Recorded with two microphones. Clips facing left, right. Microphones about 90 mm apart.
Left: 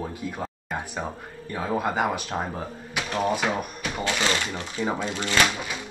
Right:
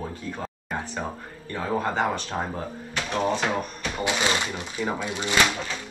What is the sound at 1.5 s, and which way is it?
Speech, 10° left (ahead or behind).